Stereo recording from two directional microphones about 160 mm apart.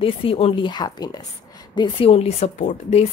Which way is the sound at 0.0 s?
35° left (ahead or behind).